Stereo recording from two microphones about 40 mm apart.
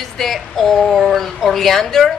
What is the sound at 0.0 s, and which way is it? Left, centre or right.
A woman's voice, centre.